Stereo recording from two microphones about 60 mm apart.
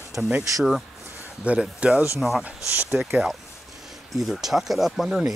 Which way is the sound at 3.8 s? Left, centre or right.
Centre.